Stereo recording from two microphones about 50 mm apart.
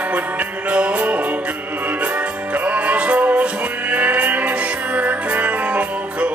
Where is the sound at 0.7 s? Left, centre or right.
Right.